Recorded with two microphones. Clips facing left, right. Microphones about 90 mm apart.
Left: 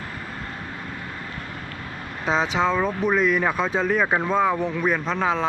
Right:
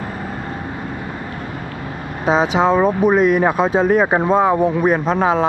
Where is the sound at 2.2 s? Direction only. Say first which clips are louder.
Right 7 dB; 10° right (ahead or behind).